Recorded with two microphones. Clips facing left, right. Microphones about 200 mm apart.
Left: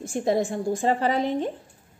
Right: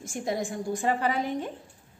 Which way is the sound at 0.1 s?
35° left (ahead or behind).